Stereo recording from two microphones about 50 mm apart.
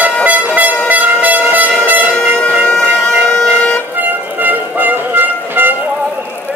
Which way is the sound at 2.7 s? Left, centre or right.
Centre.